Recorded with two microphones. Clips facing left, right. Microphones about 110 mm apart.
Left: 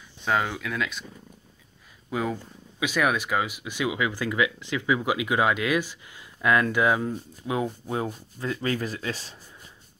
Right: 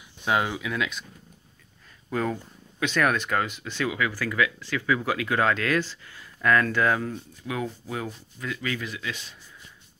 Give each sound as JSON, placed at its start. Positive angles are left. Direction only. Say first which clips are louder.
{"t": 0.2, "sound": "speech", "louder": "right 1 dB", "side_deg": -5}
{"t": 2.0, "sound": "speech", "louder": "right 1 dB", "side_deg": 10}